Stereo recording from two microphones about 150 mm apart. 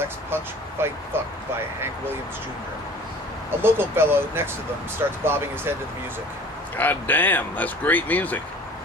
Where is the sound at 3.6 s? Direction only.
15° right (ahead or behind).